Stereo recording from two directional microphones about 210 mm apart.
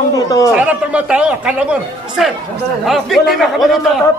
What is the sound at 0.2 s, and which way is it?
Speech, 15° left (ahead or behind).